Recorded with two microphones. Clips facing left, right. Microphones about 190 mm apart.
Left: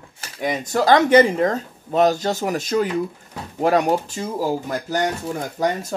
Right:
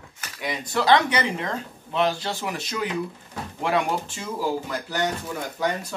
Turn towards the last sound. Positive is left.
turn(degrees=35)  # may be behind; listen again after turning